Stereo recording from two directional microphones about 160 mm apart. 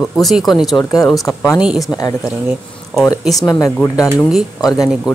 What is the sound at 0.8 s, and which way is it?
Speech, 20° left (ahead or behind).